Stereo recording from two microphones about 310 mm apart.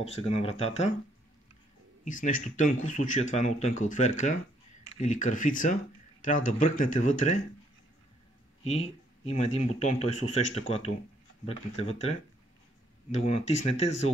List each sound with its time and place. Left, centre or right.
0.0 s speech: centre
2.0 s speech: left
8.6 s speech: centre